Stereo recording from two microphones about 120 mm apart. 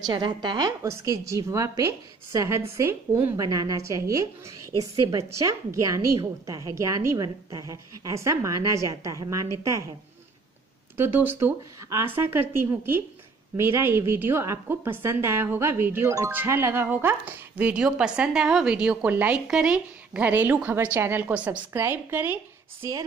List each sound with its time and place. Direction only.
0.0 s a woman's voice: 40° right (ahead or behind); by 3.4 s 20° right (ahead or behind)
3.4 s a woman's voice: 30° right (ahead or behind)
11.0 s a woman's voice: 20° right (ahead or behind)
22.8 s a woman's voice: 30° right (ahead or behind)